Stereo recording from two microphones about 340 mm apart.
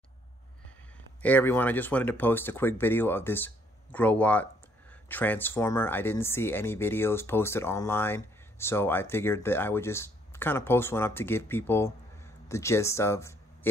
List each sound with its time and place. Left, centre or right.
1.2 s speech: centre